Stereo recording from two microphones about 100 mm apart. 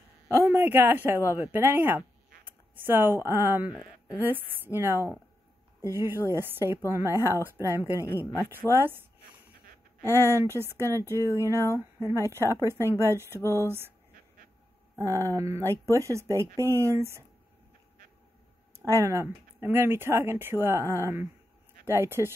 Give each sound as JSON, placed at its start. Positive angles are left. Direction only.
{"t": 0.3, "sound": "speech", "side_deg": -25}
{"t": 3.7, "sound": "speech", "side_deg": -10}
{"t": 7.1, "sound": "speech", "side_deg": 35}
{"t": 7.7, "sound": "speech", "side_deg": -25}
{"t": 10.0, "sound": "speech", "side_deg": -25}
{"t": 11.1, "sound": "speech", "side_deg": 30}
{"t": 12.6, "sound": "speech", "side_deg": -25}
{"t": 13.4, "sound": "speech", "side_deg": 30}
{"t": 13.7, "sound": "speech", "side_deg": -25}
{"t": 15.0, "sound": "speech", "side_deg": -30}
{"t": 18.9, "sound": "speech", "side_deg": -30}